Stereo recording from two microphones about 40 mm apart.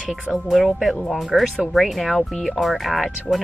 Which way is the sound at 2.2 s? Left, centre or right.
Centre.